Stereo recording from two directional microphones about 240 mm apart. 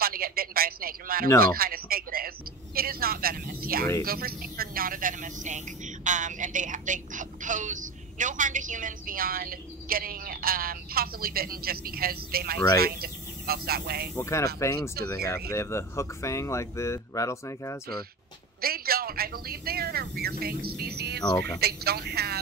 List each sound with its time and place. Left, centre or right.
0.0 s a woman's voice: right
1.4 s a sound: right
4.0 s a woman's voice: right
14.1 s speech: centre
18.6 s a woman's voice: right